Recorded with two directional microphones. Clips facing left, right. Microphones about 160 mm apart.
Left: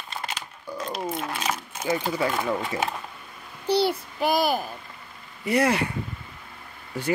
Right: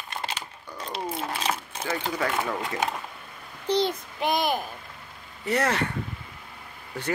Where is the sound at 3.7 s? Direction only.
10° left (ahead or behind).